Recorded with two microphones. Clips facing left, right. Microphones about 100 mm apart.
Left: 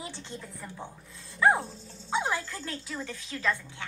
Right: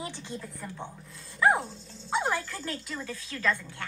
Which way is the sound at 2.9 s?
25° left (ahead or behind).